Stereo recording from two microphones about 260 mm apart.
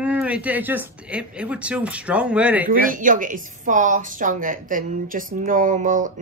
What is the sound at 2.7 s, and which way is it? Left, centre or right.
A woman's voice, right.